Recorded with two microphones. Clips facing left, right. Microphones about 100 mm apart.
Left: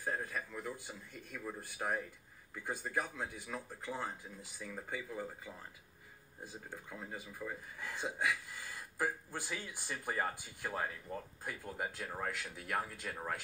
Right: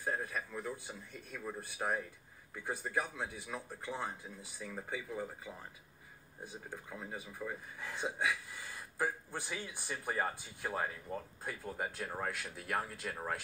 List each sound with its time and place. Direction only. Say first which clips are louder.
0.0 s speech: right 1 dB; 20° right (ahead or behind)